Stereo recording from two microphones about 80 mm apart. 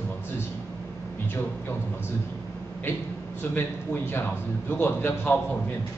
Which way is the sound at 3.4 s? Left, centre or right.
Left.